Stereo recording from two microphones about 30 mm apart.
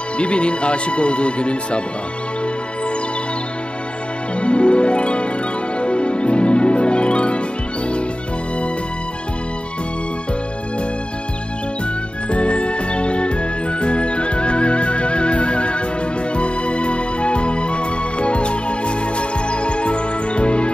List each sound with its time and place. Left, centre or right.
0.2 s speech: left
4.4 s music: left
12.3 s music: left